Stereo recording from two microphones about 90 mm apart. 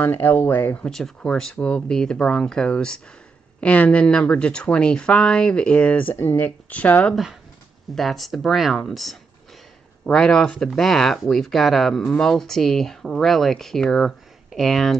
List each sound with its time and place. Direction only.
0.0 s speech: 20° left (ahead or behind)
0.8 s speech: 5° left (ahead or behind)
7.9 s speech: centre (ahead or behind)